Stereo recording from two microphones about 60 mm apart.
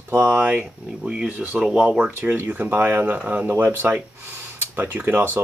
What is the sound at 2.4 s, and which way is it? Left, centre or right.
Speech, right.